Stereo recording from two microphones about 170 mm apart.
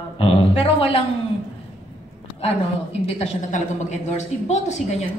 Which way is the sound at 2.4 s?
35° left (ahead or behind).